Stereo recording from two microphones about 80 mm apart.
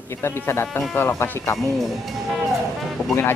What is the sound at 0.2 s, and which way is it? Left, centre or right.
Speech, left.